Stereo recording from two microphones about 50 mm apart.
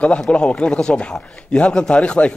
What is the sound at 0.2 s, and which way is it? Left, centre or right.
A man's voice, centre.